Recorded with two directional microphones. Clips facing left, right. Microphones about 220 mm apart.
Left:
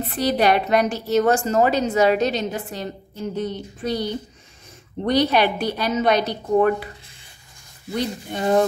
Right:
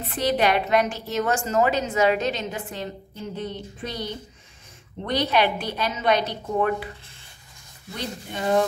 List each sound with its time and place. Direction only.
0.2 s a woman's voice: 40° left (ahead or behind)
8.3 s a woman's voice: 40° left (ahead or behind)